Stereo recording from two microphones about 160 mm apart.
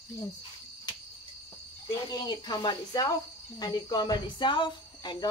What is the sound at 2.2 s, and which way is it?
Speech, 25° left (ahead or behind).